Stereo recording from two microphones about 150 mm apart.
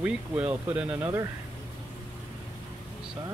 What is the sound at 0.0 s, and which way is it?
Speech, 10° right (ahead or behind).